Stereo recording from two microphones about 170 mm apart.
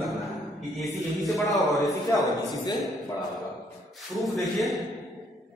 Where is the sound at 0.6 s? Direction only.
Centre (ahead or behind).